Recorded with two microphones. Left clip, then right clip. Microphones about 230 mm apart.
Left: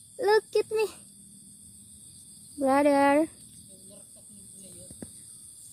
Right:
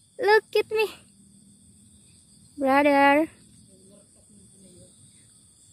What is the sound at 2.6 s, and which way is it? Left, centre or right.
Speech, centre.